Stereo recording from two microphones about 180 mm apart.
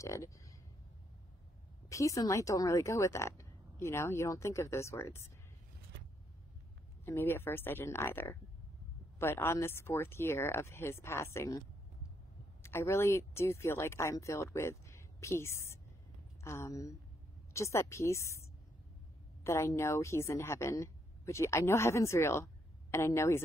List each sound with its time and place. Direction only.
0.0 s speech: 15° left (ahead or behind)
1.9 s speech: 15° left (ahead or behind)
7.1 s speech: 10° left (ahead or behind)
12.6 s a woman's voice: 15° left (ahead or behind)